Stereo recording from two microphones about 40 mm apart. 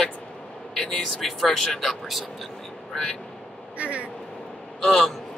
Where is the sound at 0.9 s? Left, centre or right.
Centre.